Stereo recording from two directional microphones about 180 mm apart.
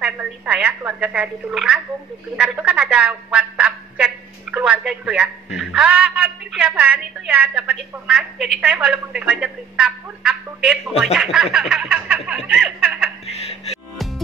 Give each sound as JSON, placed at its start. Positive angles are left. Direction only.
{"t": 0.0, "sound": "a woman's voice", "side_deg": -5}
{"t": 11.1, "sound": "snicker", "side_deg": -5}
{"t": 13.3, "sound": "music", "side_deg": 35}